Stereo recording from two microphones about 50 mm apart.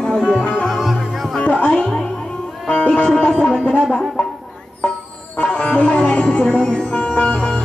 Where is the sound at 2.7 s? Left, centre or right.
Centre.